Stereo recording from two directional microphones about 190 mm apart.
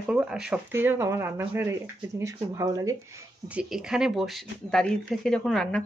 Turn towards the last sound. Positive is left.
turn(degrees=5)  # may be behind; listen again after turning